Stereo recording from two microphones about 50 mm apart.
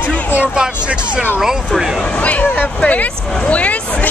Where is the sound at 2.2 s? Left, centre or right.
Left.